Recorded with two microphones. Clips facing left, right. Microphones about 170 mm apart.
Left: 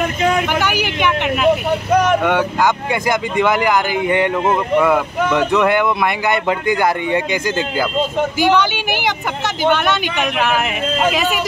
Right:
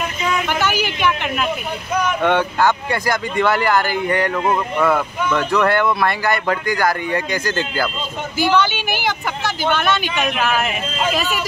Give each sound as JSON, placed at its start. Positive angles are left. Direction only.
{"t": 0.0, "sound": "a sound", "side_deg": 60}
{"t": 0.6, "sound": "speech", "side_deg": 15}
{"t": 1.7, "sound": "speech", "side_deg": 75}
{"t": 2.2, "sound": "speech", "side_deg": 10}
{"t": 4.7, "sound": "speech", "side_deg": 10}